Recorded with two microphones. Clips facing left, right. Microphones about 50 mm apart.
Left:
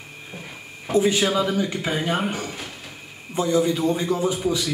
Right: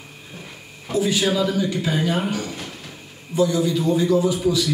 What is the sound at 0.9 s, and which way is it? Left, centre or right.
A man's voice, left.